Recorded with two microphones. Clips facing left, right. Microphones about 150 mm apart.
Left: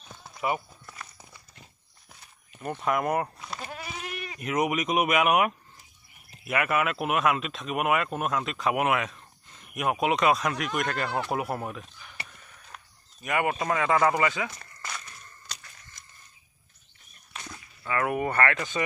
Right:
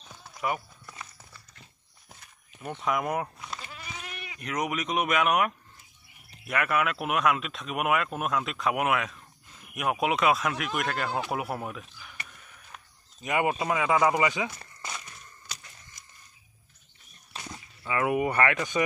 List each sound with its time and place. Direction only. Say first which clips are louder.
0.1 s clip-clop: left 2 dB; 5° left (ahead or behind)
2.5 s speech: left 2 dB; centre (ahead or behind)
3.6 s goat: left 5 dB; 50° left (ahead or behind)
4.4 s speech: left 4 dB; 5° left (ahead or behind)
12.7 s a sound: left 1 dB; centre (ahead or behind)
13.2 s speech: even; 20° right (ahead or behind)
14.6 s a sound: even; 20° right (ahead or behind)
17.4 s speech: right 1 dB; 15° right (ahead or behind)